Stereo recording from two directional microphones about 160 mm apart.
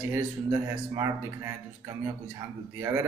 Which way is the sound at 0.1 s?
20° right (ahead or behind).